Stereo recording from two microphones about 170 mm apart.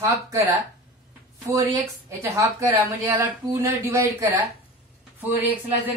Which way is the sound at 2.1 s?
15° right (ahead or behind).